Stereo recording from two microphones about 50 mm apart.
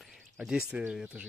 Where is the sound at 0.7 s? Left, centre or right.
Right.